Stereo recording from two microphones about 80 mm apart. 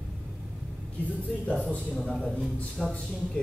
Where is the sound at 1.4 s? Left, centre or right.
Centre.